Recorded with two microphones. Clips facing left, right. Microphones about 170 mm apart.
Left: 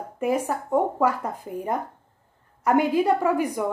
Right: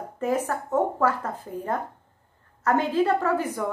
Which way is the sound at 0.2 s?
10° left (ahead or behind).